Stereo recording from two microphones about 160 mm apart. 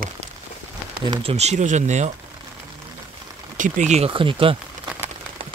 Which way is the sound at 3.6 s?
50° right (ahead or behind).